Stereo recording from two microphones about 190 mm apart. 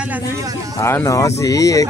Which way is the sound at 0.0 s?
10° right (ahead or behind).